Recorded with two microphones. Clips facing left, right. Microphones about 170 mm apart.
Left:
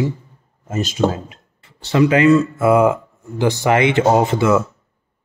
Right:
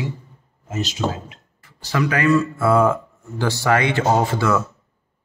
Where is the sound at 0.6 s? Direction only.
50° left (ahead or behind).